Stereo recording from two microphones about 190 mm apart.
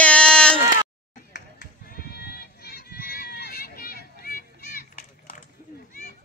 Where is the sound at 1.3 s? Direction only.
60° left (ahead or behind).